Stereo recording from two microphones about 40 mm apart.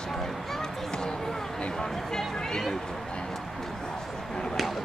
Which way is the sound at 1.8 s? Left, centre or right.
Centre.